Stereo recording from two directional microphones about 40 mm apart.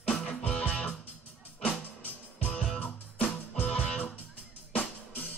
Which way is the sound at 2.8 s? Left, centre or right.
Left.